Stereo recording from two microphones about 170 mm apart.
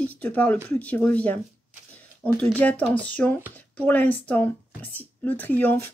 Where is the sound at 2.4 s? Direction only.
10° left (ahead or behind).